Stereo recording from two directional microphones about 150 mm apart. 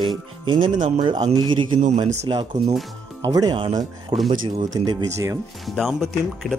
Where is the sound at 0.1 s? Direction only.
30° right (ahead or behind).